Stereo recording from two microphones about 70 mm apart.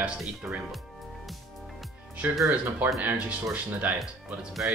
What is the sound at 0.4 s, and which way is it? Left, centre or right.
Speech, centre.